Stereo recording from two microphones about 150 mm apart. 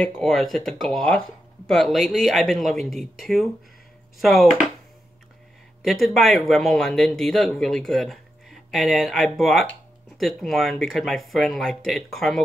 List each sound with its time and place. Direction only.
0.0 s speech: centre (ahead or behind)
5.8 s speech: centre (ahead or behind)